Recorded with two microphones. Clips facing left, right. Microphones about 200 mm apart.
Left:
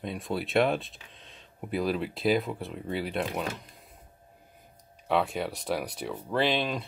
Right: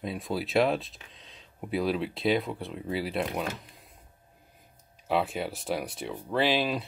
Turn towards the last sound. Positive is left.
turn(degrees=-5)  # may be behind; listen again after turning